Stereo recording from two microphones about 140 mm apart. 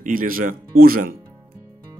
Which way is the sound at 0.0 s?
80° right.